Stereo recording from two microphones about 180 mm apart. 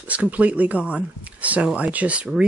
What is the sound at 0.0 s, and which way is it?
Speech, 10° right (ahead or behind).